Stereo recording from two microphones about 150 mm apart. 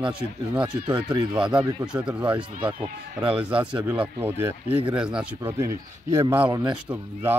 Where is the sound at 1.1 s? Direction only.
30° right (ahead or behind).